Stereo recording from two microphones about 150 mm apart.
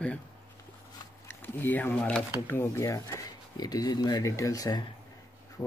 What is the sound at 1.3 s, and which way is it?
Speech, 15° left (ahead or behind).